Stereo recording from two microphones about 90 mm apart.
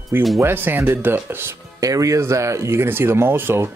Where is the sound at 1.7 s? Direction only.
40° right (ahead or behind).